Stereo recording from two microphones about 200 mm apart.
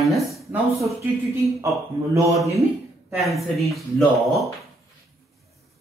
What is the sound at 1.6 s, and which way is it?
Speech, 15° right (ahead or behind).